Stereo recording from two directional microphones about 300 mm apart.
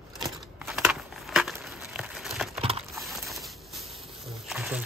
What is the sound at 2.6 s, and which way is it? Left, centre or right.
Typing, centre.